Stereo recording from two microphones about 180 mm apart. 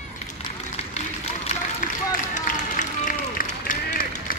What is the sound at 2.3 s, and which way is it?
Run, 45° left (ahead or behind).